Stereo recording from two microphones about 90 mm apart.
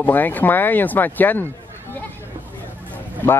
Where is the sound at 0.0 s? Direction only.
20° left (ahead or behind).